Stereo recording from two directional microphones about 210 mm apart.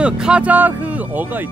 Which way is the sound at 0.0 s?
5° right (ahead or behind).